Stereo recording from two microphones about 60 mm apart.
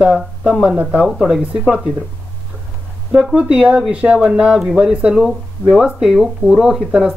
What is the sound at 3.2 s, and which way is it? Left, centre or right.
Speech, centre.